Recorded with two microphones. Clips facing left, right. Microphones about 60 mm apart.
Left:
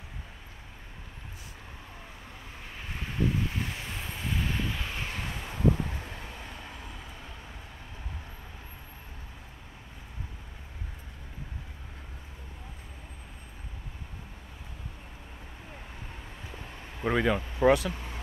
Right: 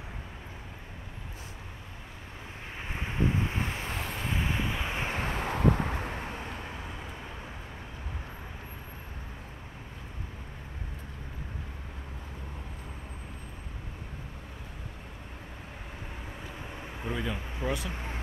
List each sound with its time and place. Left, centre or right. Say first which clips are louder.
2.8 s vehicle: even; right
4.0 s vehicle: right 3 dB; right
4.3 s vehicle: even; centre
5.2 s vehicle: right 1 dB; right
16.5 s vehicle: right 3 dB; centre
17.0 s speech: left 8 dB; left